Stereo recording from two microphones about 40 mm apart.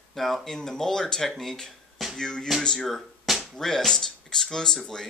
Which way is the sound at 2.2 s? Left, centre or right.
Centre.